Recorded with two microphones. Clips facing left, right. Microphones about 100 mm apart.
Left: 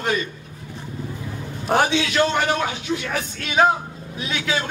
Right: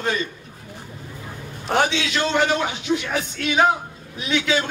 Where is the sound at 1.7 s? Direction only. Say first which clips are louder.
Left 1 dB; 10° left (ahead or behind).